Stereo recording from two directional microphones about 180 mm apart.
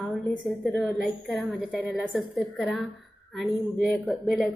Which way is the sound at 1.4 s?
Centre (ahead or behind).